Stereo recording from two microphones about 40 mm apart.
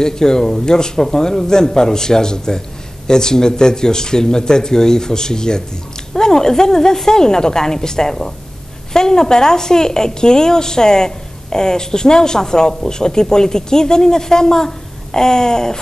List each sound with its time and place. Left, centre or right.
0.0 s a woman's voice: centre